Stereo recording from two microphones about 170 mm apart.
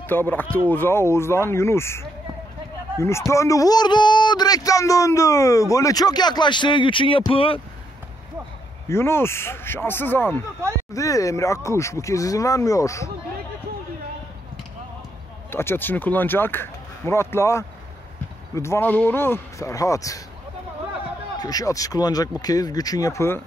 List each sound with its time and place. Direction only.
0.0 s a man's voice: 10° left (ahead or behind); by 7.6 s 30° left (ahead or behind)
8.8 s a man's voice: 15° left (ahead or behind)
15.5 s speech: 15° left (ahead or behind)
21.4 s a man's voice: 20° left (ahead or behind)